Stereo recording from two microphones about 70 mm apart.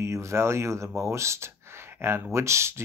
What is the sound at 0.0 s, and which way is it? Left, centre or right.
Speech, right.